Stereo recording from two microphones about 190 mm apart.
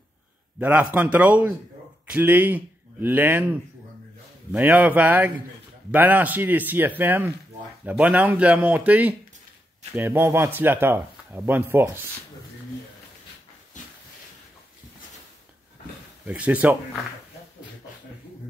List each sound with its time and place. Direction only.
0.6 s a man's voice: 10° right (ahead or behind)
4.5 s speech: 10° right (ahead or behind)
13.7 s a sound: 40° left (ahead or behind)
16.3 s speech: 5° right (ahead or behind)